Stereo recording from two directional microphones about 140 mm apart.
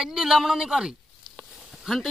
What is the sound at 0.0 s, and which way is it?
Speech, 5° right (ahead or behind).